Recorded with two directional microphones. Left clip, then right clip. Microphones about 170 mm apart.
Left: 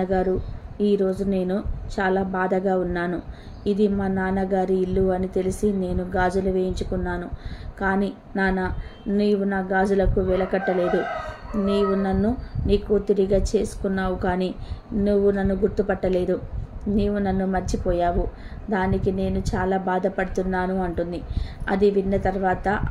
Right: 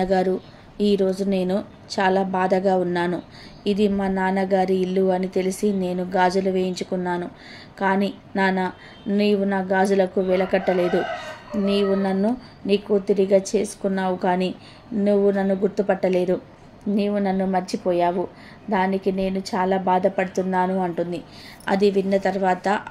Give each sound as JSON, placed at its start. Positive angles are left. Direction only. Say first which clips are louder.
{"t": 0.0, "sound": "a woman's voice", "louder": "right 2 dB", "side_deg": -20}